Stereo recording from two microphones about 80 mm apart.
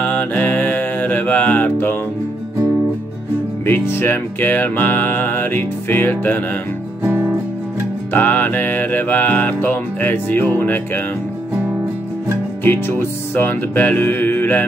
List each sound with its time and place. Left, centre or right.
0.0 s music: centre
3.6 s music: left
7.0 s music: right
8.1 s music: left
12.6 s music: left